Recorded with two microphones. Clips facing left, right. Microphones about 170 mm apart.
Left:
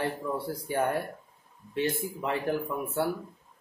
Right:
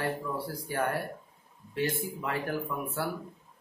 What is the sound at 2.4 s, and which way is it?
Speech, 25° left (ahead or behind).